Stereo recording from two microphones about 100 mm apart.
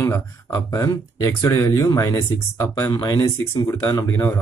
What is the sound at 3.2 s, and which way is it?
Speech, 25° left (ahead or behind).